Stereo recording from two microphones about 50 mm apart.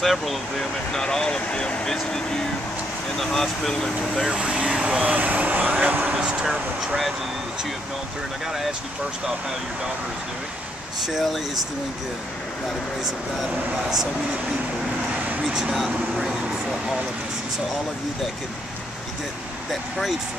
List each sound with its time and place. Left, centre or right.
0.0 s speech: centre
1.0 s speech: centre
4.3 s speech: centre
6.4 s speech: centre
11.1 s speech: centre
13.0 s speech: centre
15.7 s speech: centre
19.7 s speech: centre